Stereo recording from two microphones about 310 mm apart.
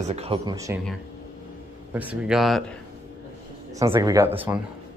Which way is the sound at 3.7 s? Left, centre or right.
Centre.